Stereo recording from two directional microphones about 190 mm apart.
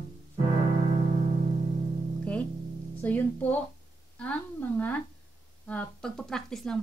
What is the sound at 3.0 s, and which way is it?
Speech, 10° left (ahead or behind).